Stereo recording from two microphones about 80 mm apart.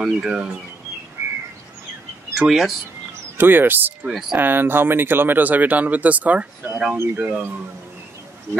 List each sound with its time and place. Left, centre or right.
0.0 s speech: centre
2.3 s speech: centre
3.3 s speech: right
4.0 s speech: centre
4.4 s speech: right